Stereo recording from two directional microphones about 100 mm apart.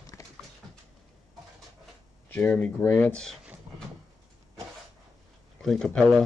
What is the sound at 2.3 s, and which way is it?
Speech, 15° left (ahead or behind).